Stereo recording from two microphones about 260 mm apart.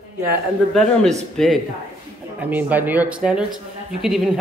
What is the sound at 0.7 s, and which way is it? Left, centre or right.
A man's voice, centre.